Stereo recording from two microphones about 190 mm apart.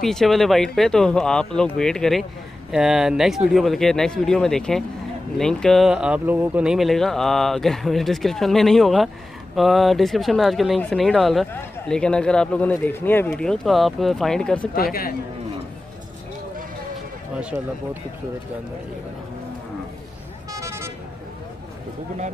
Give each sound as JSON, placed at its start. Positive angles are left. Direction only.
{"t": 0.0, "sound": "speech", "side_deg": 0}
{"t": 14.8, "sound": "speech", "side_deg": 50}
{"t": 20.5, "sound": "vehicle", "side_deg": -15}